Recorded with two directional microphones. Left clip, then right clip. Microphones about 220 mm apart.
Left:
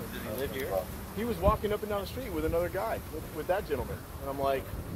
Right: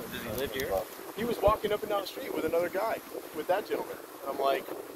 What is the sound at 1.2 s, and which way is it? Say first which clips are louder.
Speech: right 2 dB; 40° right (ahead or behind).